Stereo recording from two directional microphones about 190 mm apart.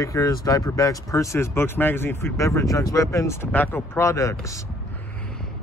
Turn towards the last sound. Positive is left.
turn(degrees=15)  # may be behind; listen again after turning